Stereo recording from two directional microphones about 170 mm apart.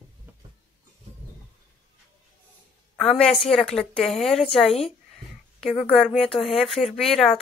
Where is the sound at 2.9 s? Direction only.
5° left (ahead or behind).